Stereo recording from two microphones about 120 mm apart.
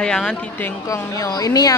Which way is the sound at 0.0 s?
5° left (ahead or behind).